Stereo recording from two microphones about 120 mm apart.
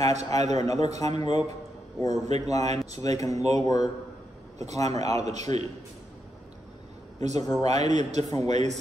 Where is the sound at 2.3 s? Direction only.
60° right (ahead or behind).